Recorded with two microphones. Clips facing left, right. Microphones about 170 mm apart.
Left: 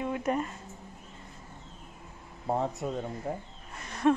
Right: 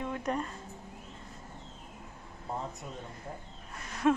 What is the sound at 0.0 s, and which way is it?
Speech, 10° left (ahead or behind).